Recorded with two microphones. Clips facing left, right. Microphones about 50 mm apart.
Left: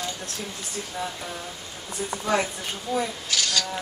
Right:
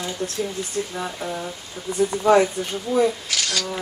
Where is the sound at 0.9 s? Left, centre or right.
Centre; by 3.6 s right.